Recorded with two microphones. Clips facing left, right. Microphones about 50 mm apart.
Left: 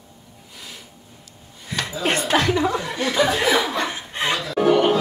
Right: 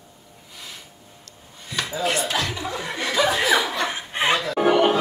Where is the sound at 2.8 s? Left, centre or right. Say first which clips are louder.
Left 2 dB; centre.